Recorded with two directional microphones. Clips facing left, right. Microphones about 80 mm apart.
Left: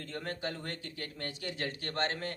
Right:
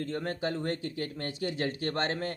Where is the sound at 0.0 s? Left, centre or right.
Right.